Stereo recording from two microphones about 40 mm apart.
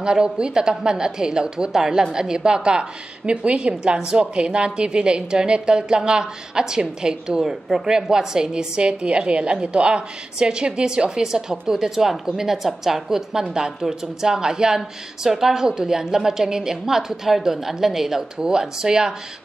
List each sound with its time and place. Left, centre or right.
0.0 s a woman's voice: right